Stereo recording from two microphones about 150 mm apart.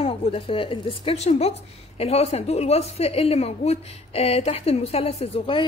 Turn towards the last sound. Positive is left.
turn(degrees=40)  # may be behind; listen again after turning